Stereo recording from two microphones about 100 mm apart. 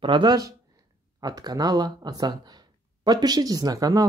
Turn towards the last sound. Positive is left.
turn(degrees=-35)  # may be behind; listen again after turning